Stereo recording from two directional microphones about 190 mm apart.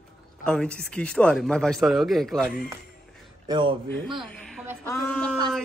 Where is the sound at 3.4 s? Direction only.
25° right (ahead or behind).